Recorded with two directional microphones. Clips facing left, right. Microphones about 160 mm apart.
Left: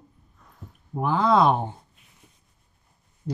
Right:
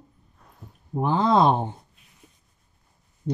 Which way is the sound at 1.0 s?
20° right (ahead or behind).